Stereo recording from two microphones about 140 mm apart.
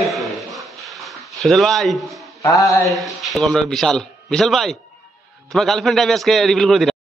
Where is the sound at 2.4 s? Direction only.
20° left (ahead or behind).